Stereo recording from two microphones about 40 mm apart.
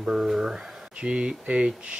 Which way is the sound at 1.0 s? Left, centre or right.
Right.